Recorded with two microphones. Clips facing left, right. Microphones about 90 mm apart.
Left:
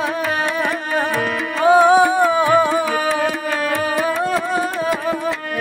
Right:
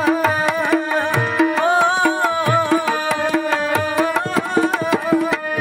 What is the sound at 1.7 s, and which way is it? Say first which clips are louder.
Music: left 4 dB; 10° left (ahead or behind).